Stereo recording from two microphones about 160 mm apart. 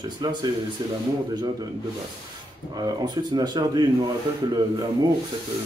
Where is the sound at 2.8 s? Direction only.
25° right (ahead or behind).